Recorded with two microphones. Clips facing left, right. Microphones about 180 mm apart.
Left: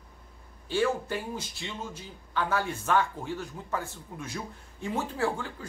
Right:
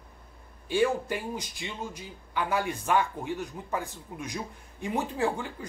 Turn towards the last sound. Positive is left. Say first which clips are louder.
# right 1 dB
turn(degrees=-15)  # may be behind; listen again after turning